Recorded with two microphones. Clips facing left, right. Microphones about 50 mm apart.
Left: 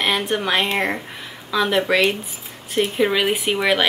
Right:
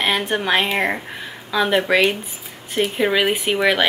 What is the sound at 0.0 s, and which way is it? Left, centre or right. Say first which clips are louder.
Speech: right 1 dB; centre.